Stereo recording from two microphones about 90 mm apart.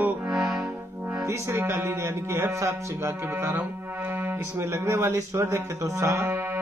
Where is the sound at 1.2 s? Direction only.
30° right (ahead or behind).